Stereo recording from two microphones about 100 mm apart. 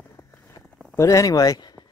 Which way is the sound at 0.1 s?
30° left (ahead or behind).